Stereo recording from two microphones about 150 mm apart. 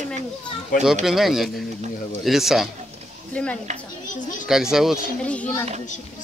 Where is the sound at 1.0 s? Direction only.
Centre (ahead or behind).